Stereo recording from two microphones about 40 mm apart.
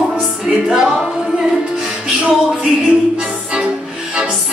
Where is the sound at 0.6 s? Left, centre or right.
Centre.